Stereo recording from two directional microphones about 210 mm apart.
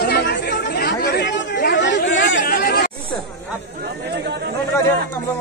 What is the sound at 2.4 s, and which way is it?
Chatter, 45° left (ahead or behind).